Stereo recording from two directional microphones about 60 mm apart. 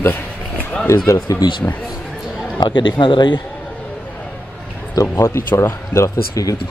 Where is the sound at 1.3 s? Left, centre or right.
Left.